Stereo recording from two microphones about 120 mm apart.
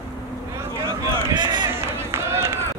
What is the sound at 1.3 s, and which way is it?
Run, 35° right (ahead or behind).